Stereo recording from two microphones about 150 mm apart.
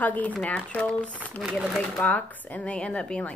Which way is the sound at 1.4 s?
5° right (ahead or behind).